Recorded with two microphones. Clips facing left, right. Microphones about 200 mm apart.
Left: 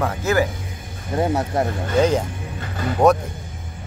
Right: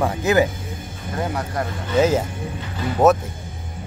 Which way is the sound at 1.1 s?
25° left (ahead or behind).